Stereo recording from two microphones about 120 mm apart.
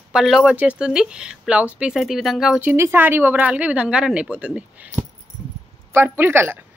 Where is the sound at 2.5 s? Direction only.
20° right (ahead or behind).